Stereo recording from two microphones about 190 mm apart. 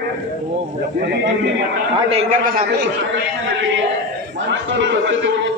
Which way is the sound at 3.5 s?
70° right (ahead or behind).